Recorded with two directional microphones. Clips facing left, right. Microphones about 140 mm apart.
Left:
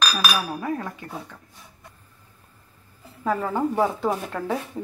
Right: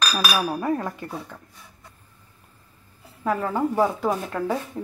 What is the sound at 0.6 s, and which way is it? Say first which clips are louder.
Speech: right 3 dB; 45° right (ahead or behind).